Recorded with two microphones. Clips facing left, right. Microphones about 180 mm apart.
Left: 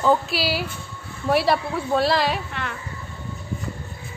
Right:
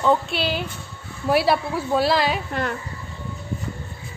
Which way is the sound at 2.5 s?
40° right (ahead or behind).